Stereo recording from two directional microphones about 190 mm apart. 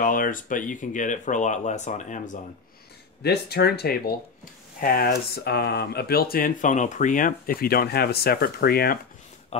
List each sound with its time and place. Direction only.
0.0 s speech: 45° left (ahead or behind)
3.2 s speech: 60° left (ahead or behind)
9.5 s speech: 35° left (ahead or behind)